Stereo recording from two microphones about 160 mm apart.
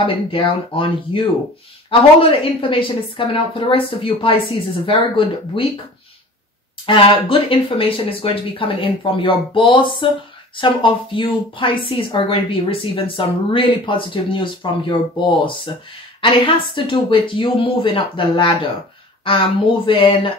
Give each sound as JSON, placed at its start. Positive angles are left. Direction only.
{"t": 0.0, "sound": "speech", "side_deg": 30}
{"t": 6.9, "sound": "speech", "side_deg": 35}